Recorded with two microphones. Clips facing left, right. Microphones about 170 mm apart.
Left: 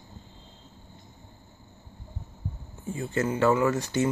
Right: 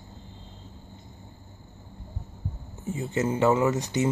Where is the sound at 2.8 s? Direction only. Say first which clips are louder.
Right 1 dB; 20° right (ahead or behind).